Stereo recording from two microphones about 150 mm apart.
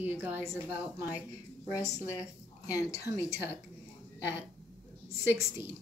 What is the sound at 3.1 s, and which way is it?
Speech, 20° right (ahead or behind).